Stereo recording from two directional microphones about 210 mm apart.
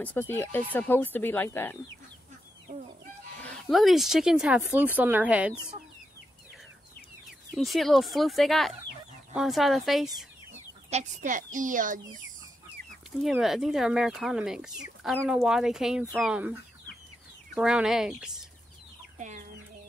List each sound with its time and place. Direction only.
0.0 s speech: 10° left (ahead or behind)
3.4 s speech: centre (ahead or behind)
7.2 s speech: centre (ahead or behind)
10.9 s speech: 35° right (ahead or behind)
13.2 s speech: centre (ahead or behind)
17.6 s speech: centre (ahead or behind)
19.1 s chicken: 35° right (ahead or behind)